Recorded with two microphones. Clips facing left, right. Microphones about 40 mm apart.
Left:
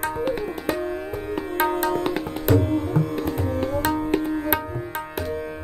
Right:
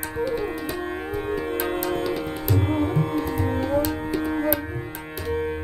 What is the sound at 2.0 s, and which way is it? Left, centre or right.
Music, left.